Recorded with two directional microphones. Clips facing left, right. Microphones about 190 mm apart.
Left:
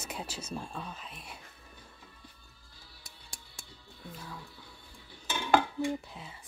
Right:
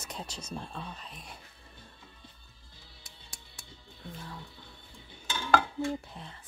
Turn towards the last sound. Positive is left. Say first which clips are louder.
# right 1 dB
turn(degrees=5)  # may be behind; listen again after turning